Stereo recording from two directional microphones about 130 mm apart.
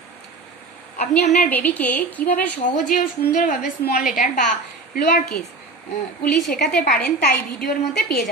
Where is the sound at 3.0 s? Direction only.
90° left.